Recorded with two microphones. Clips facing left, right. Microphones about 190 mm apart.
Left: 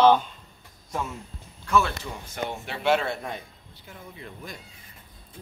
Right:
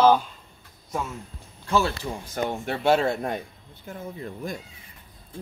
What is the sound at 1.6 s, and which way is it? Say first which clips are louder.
Speech: even; 30° right (ahead or behind).